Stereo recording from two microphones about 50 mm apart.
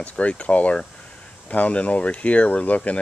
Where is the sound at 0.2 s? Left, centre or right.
Left.